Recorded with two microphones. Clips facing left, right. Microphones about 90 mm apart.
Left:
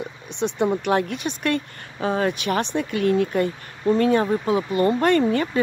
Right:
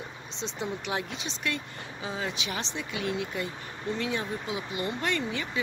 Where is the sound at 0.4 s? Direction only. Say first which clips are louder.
Left 12 dB; 60° left (ahead or behind).